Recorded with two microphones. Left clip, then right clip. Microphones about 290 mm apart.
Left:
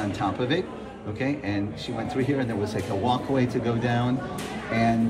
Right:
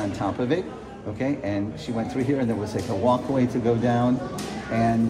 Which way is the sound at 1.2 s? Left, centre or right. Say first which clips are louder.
Right 2 dB; right.